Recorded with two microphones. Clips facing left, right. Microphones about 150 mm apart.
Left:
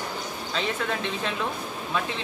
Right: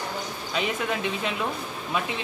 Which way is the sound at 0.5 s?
10° right (ahead or behind).